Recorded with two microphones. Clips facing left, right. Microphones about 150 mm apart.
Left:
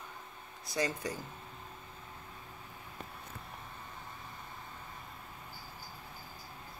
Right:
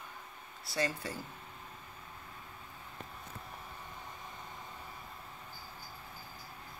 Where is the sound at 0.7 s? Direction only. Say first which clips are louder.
Left 1 dB; 15° left (ahead or behind).